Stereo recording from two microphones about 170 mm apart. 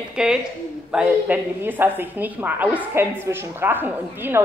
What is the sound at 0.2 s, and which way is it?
A woman's voice, 5° right (ahead or behind).